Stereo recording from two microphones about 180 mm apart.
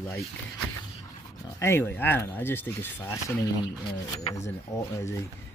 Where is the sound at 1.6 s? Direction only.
15° left (ahead or behind).